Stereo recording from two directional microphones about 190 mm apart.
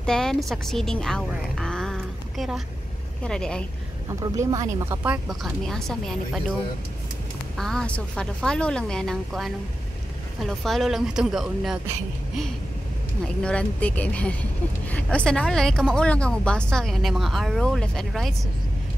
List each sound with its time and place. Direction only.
0.0 s a woman's voice: 5° left (ahead or behind)
4.2 s a woman's voice: 20° right (ahead or behind); by 6.4 s centre (ahead or behind)
7.5 s a woman's voice: centre (ahead or behind)
13.4 s a woman's voice: 5° left (ahead or behind)